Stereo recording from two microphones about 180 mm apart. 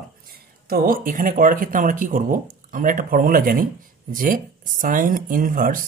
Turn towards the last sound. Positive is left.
turn(degrees=-50)  # may be behind; listen again after turning